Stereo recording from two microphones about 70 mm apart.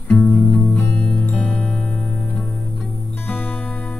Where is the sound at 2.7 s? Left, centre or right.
Centre.